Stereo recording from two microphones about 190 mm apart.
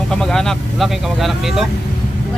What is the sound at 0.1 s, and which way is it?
Speech, 5° left (ahead or behind).